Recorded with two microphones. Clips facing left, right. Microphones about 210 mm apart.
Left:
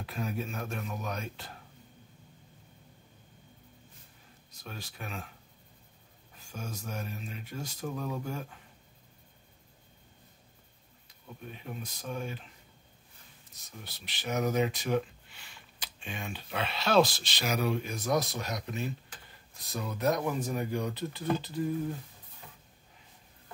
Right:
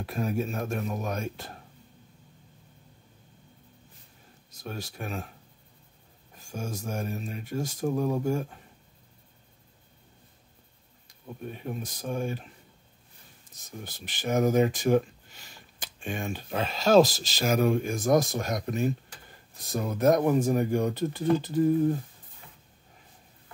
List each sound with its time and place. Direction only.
0.0 s speech: 40° right (ahead or behind)
4.5 s speech: 45° right (ahead or behind)
6.4 s speech: 45° right (ahead or behind)
11.1 s speech: 45° right (ahead or behind)
13.7 s speech: 45° right (ahead or behind)